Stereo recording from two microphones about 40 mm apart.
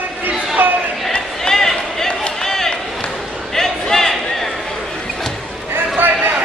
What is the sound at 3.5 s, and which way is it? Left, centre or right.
Crowd, centre.